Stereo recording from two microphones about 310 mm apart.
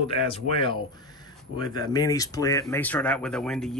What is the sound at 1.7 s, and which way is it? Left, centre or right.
Speech, centre.